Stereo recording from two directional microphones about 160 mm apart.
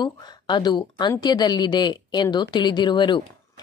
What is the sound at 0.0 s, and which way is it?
A woman's voice, 25° left (ahead or behind).